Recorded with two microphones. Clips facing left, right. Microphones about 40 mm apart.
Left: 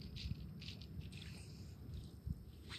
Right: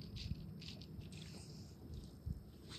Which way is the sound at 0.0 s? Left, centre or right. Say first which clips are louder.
Right 1 dB; centre.